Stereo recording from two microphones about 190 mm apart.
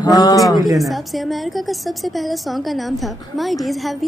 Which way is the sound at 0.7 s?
Centre (ahead or behind).